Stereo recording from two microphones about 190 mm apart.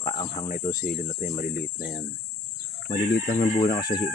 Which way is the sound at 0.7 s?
50° left (ahead or behind).